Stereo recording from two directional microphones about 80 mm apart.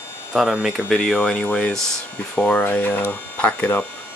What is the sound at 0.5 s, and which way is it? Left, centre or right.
Speech, centre.